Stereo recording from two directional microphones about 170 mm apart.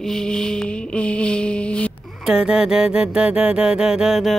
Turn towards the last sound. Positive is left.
turn(degrees=0)  # may be behind; listen again after turning